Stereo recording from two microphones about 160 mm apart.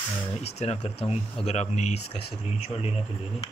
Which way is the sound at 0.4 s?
40° left (ahead or behind).